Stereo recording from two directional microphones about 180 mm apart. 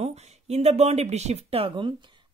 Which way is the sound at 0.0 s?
40° right (ahead or behind).